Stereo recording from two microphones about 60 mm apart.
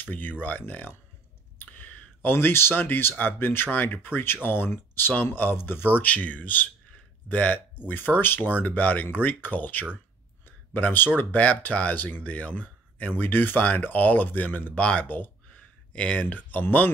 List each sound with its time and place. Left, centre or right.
0.0 s speech: left
10.4 s a sound: left
11.1 s speech: left
13.1 s speech: left